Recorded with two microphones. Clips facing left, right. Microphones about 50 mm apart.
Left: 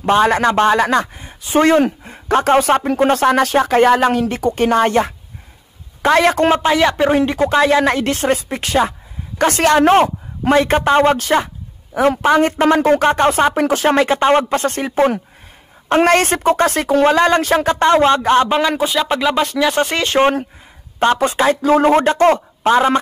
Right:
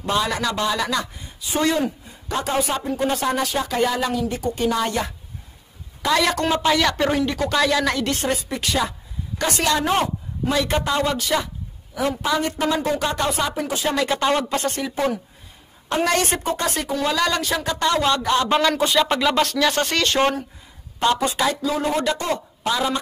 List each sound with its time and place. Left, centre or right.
0.0 s a man's voice: left
6.7 s a man's voice: left
14.0 s speech: left
18.5 s speech: centre; by 20.3 s left
21.0 s speech: left